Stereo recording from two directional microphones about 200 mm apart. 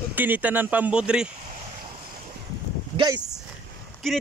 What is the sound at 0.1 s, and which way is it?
Speech, 10° right (ahead or behind).